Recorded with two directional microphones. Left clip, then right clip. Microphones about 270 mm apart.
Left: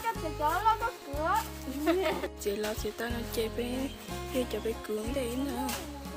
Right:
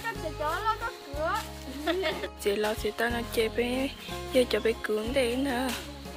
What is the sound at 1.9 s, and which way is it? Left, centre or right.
Speech, left.